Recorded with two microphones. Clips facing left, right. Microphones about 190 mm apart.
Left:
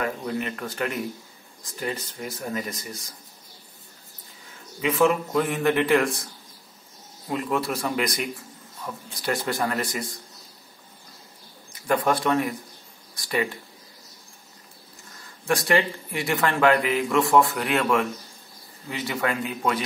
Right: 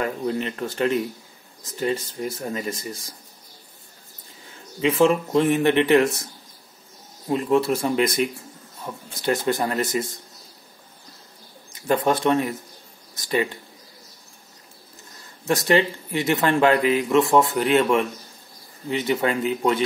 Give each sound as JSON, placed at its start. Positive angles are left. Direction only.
{"t": 0.0, "sound": "speech", "side_deg": -30}
{"t": 4.8, "sound": "speech", "side_deg": -30}
{"t": 7.2, "sound": "speech", "side_deg": -25}
{"t": 11.9, "sound": "speech", "side_deg": -25}
{"t": 15.4, "sound": "speech", "side_deg": -20}